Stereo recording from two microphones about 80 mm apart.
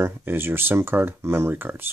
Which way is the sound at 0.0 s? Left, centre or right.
Right.